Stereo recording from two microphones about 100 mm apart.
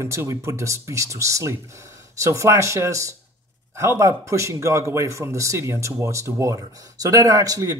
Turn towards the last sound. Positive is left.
turn(degrees=-35)  # may be behind; listen again after turning